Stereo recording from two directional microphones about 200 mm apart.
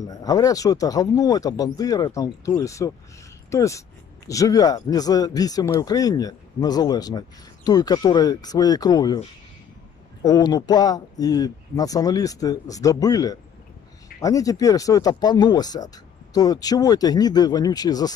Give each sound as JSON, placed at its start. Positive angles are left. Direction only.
{"t": 0.0, "sound": "speech", "side_deg": 20}
{"t": 10.2, "sound": "speech", "side_deg": 20}